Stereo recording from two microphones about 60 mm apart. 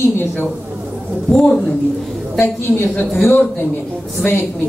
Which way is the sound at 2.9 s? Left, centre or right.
Left.